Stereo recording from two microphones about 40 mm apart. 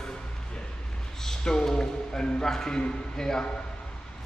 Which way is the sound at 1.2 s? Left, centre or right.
Centre.